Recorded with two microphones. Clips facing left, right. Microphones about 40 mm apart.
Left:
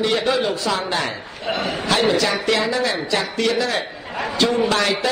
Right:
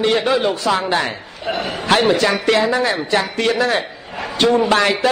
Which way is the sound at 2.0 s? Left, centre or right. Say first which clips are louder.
Right 3 dB; right.